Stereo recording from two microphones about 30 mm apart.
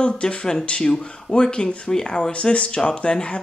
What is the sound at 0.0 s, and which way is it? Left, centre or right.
Speech, left.